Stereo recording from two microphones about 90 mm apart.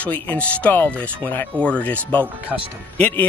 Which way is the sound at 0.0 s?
15° left (ahead or behind).